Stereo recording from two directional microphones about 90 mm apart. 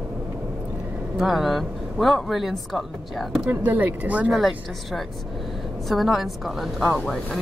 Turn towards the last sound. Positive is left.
turn(degrees=0)  # may be behind; listen again after turning